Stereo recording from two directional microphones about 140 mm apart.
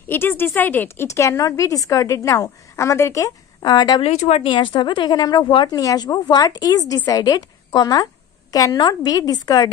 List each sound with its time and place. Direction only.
0.0 s a woman's voice: 15° left (ahead or behind); by 4.0 s 30° left (ahead or behind)
4.0 s a woman's voice: 50° left (ahead or behind); by 9.7 s 30° left (ahead or behind)